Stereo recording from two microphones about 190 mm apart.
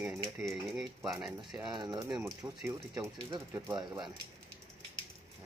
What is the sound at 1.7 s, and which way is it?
Speech, 20° right (ahead or behind).